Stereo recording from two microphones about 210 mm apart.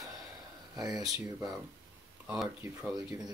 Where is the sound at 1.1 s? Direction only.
15° right (ahead or behind).